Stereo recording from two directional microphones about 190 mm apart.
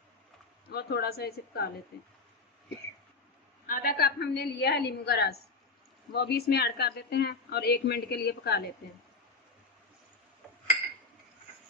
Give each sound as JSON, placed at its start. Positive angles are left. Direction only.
{"t": 0.7, "sound": "a woman's voice", "side_deg": 55}
{"t": 3.6, "sound": "a woman's voice", "side_deg": 50}